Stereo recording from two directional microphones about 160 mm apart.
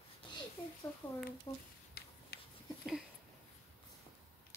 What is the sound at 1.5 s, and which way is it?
Speech, 20° left (ahead or behind).